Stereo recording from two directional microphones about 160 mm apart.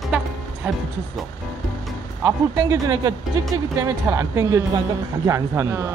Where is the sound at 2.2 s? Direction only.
20° right (ahead or behind).